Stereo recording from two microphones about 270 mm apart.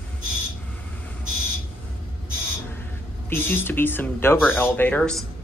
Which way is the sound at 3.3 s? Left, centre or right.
Centre.